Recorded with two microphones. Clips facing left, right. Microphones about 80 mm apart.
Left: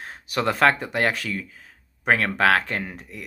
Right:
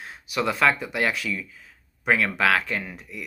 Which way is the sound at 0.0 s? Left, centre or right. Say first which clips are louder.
Left 2 dB; left.